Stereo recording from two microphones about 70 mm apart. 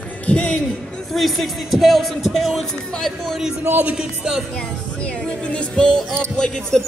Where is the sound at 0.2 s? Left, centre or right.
Centre.